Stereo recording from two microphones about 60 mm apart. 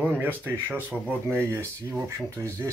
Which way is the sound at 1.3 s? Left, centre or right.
Right.